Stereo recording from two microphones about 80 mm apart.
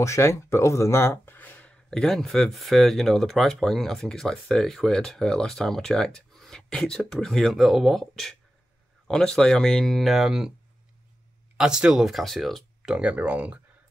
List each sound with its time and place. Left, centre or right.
0.0 s speech: left
1.9 s speech: centre
11.5 s speech: centre
12.8 s speech: centre